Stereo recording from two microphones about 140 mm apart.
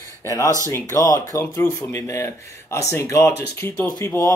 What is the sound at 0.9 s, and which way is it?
Speech, 25° left (ahead or behind).